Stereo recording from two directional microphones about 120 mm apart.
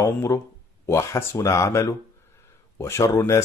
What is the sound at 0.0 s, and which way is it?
Speech, 25° left (ahead or behind).